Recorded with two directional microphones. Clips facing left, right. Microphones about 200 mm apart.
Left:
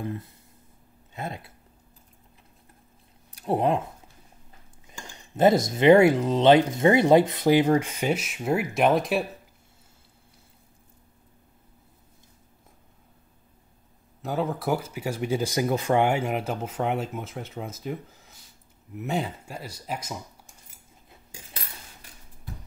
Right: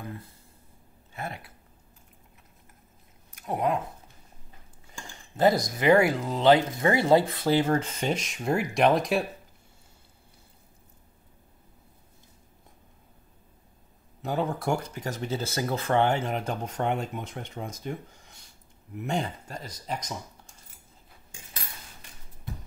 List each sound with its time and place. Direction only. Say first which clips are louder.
1.1 s speech: left 2 dB; 20° left (ahead or behind)
3.3 s speech: left 4 dB; 30° left (ahead or behind)
4.8 s speech: left 1 dB; 20° left (ahead or behind); by 9.2 s centre (ahead or behind)
14.2 s speech: left 1 dB; centre (ahead or behind)